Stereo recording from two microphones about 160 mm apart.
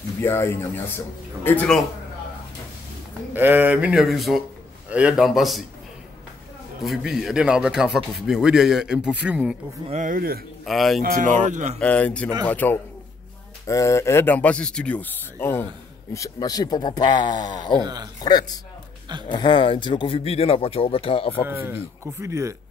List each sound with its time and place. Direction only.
0.2 s speech: 15° left (ahead or behind)
3.3 s speech: 10° right (ahead or behind)
6.8 s speech: centre (ahead or behind)
9.8 s speech: 50° right (ahead or behind)
10.6 s speech: centre (ahead or behind)
11.0 s speech: 60° right (ahead or behind)
11.8 s speech: 10° left (ahead or behind); by 17.7 s 25° left (ahead or behind)
19.2 s speech: 30° left (ahead or behind)
21.5 s speech: 15° right (ahead or behind)